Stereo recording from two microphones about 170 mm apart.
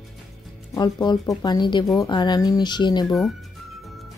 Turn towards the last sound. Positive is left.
turn(degrees=25)  # may be behind; listen again after turning